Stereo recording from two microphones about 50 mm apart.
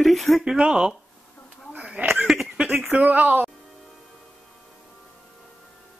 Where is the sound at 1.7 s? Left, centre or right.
Right.